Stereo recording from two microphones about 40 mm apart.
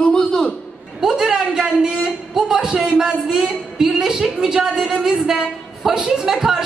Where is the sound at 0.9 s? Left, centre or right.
Centre.